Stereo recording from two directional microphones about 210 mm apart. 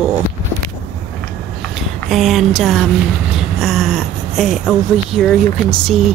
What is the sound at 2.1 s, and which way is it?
Speech, centre (ahead or behind).